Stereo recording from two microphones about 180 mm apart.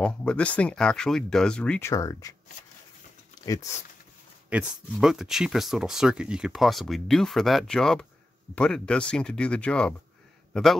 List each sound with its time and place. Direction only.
0.0 s speech: 5° left (ahead or behind)
3.4 s speech: 20° left (ahead or behind)
4.5 s a man's voice: 5° right (ahead or behind)